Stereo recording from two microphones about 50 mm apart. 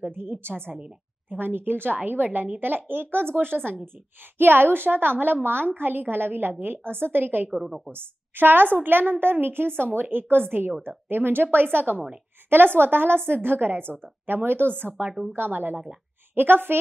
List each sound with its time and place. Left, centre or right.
0.0 s a woman's voice: right
7.5 s a woman's voice: centre
7.9 s a woman's voice: right